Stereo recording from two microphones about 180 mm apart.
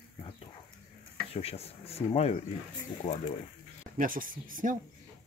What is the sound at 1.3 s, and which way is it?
Speech, 35° left (ahead or behind).